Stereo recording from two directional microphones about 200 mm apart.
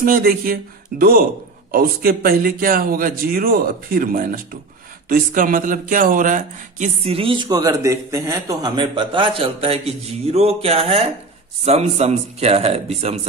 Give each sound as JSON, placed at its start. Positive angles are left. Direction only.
{"t": 0.0, "sound": "speech", "side_deg": -45}